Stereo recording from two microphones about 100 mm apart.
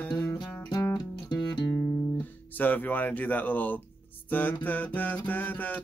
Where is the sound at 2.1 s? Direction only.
20° left (ahead or behind).